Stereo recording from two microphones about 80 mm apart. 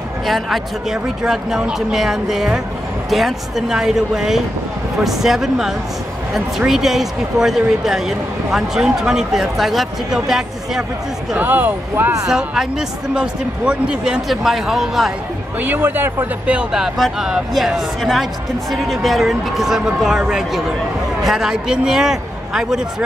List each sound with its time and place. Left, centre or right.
0.3 s speech: centre
11.3 s speech: right
11.9 s speech: right
12.3 s speech: centre
15.6 s speech: right
16.5 s speech: centre